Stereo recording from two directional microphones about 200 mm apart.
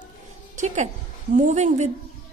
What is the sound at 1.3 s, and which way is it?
Speech, 35° right (ahead or behind).